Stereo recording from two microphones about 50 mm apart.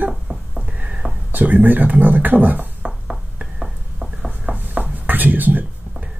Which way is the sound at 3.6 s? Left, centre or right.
Centre.